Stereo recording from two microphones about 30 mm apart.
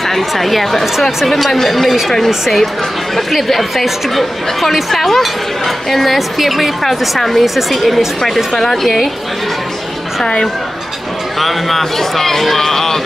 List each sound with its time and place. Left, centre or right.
0.1 s speech: centre
6.1 s speech: centre
6.8 s speech: centre
8.5 s speech: centre
10.2 s speech: left
11.3 s speech: centre